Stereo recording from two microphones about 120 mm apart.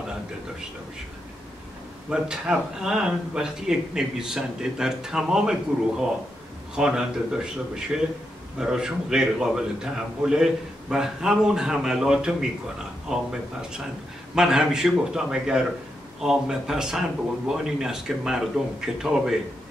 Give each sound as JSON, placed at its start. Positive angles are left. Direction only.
{"t": 2.0, "sound": "speech", "side_deg": -5}